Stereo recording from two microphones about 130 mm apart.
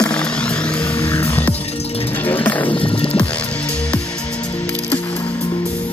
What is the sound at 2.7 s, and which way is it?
Music, 45° left (ahead or behind).